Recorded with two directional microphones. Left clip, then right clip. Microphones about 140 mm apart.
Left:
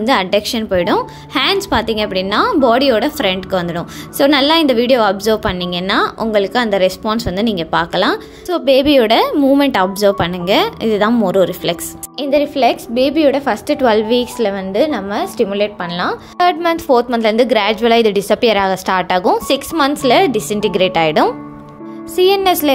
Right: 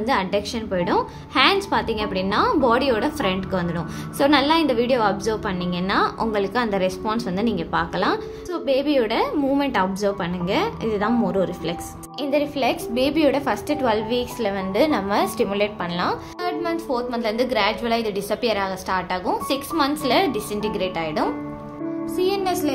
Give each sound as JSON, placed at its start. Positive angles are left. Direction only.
{"t": 0.0, "sound": "a woman's voice", "side_deg": 40}
{"t": 14.5, "sound": "a woman's voice", "side_deg": 30}
{"t": 16.3, "sound": "a woman's voice", "side_deg": 70}